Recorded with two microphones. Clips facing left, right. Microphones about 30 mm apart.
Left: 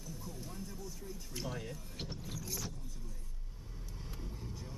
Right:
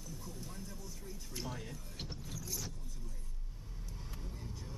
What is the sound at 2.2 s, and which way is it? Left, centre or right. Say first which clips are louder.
Vehicle: left 2 dB; centre.